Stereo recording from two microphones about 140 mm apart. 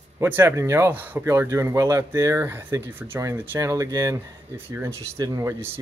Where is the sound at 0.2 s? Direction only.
15° right (ahead or behind).